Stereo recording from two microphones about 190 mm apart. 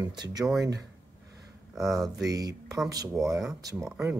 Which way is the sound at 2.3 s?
20° right (ahead or behind).